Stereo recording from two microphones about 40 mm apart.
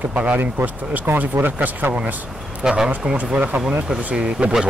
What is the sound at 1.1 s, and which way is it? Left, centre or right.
Speech, right.